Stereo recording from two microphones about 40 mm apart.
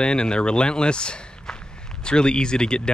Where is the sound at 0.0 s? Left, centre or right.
Left.